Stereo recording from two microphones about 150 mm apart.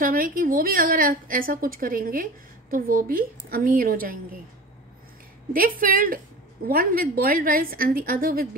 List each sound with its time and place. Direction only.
0.0 s a woman's voice: 70° right (ahead or behind)
5.5 s a woman's voice: 70° right (ahead or behind)